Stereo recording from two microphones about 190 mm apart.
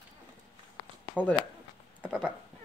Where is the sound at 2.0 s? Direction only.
5° right (ahead or behind).